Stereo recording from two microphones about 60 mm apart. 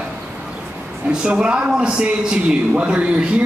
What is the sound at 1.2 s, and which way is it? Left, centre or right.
A man's voice, centre.